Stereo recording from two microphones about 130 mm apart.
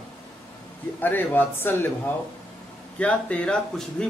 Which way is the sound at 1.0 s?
15° left (ahead or behind).